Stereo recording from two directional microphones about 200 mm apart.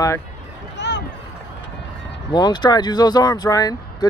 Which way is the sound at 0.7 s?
60° left (ahead or behind).